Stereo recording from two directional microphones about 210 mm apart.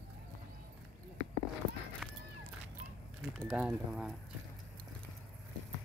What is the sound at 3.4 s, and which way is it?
Speech, 5° right (ahead or behind).